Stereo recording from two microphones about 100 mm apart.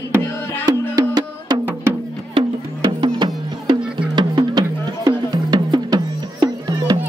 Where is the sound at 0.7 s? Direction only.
45° right (ahead or behind).